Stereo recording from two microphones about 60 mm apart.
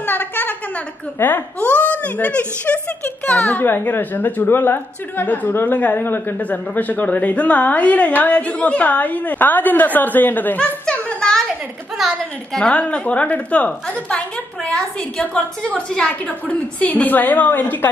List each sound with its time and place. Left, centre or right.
0.0 s a sound: left
1.2 s a woman's voice: left
10.6 s a child's voice: centre
12.0 s a woman's voice: centre
12.5 s a woman's voice: centre